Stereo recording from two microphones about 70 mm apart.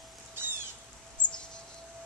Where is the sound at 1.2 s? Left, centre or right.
Left.